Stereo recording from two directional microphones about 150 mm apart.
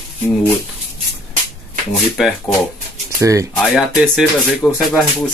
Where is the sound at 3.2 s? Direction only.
20° right (ahead or behind).